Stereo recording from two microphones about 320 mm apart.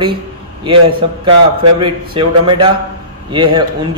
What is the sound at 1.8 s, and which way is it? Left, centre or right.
Speech, centre.